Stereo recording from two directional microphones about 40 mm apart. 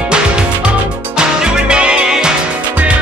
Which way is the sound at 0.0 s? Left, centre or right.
Right.